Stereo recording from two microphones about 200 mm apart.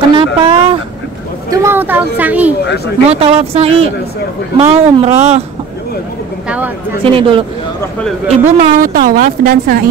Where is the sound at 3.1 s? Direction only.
30° right (ahead or behind).